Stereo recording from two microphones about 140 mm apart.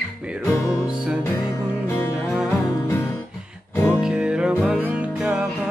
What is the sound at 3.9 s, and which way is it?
Music, 5° right (ahead or behind).